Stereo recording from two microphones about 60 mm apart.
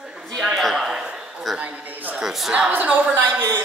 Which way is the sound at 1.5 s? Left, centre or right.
Right.